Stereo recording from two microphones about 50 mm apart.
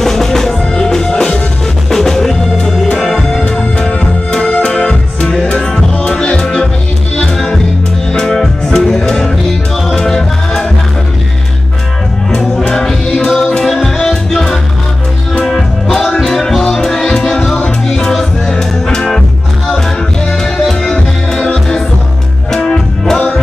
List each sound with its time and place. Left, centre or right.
0.0 s music: centre
12.3 s music: centre
20.9 s music: centre